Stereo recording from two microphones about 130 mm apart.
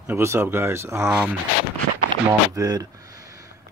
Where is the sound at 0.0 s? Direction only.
20° right (ahead or behind).